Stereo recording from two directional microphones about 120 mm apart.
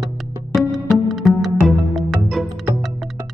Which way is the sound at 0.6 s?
Centre (ahead or behind).